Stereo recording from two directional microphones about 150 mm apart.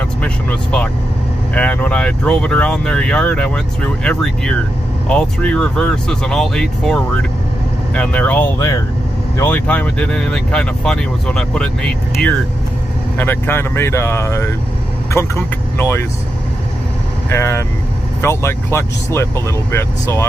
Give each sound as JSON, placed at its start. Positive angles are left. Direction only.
{"t": 0.2, "sound": "speech", "side_deg": 5}
{"t": 17.3, "sound": "speech", "side_deg": 20}